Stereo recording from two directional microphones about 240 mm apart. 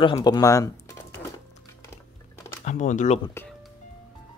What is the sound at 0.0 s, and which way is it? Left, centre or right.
Speech, centre.